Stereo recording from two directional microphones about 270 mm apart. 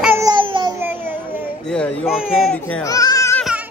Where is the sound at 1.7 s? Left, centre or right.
Centre.